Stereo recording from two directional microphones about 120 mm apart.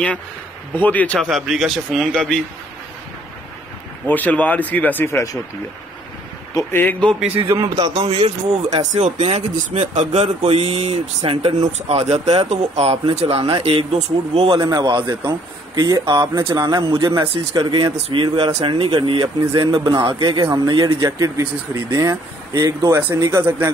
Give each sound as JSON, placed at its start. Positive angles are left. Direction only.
{"t": 0.7, "sound": "speech", "side_deg": 15}
{"t": 1.3, "sound": "a man's voice", "side_deg": 0}
{"t": 4.0, "sound": "speech", "side_deg": 15}
{"t": 6.5, "sound": "speech", "side_deg": 20}
{"t": 7.2, "sound": "speech", "side_deg": -15}
{"t": 7.9, "sound": "speech", "side_deg": -55}
{"t": 8.6, "sound": "speech", "side_deg": -75}
{"t": 14.5, "sound": "a man's voice", "side_deg": -30}
{"t": 14.8, "sound": "a man's voice", "side_deg": -45}